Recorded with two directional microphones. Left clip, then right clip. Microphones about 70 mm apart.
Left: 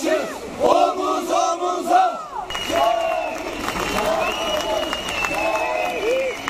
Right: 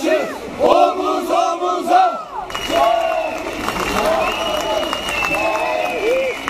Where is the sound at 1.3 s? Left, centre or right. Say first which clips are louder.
Right 4 dB; left.